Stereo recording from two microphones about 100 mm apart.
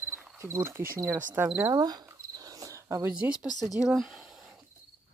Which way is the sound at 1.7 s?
40° right (ahead or behind).